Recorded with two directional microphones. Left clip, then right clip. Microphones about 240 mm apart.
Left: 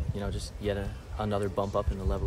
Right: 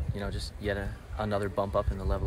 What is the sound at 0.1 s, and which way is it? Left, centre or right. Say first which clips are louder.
Speech: even; centre.